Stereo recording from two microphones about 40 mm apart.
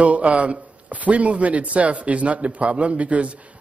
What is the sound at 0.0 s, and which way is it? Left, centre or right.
Speech, right.